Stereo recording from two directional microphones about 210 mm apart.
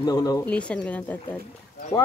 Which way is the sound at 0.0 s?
15° left (ahead or behind).